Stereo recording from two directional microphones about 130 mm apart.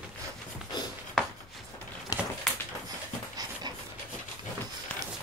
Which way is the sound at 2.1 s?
30° left (ahead or behind).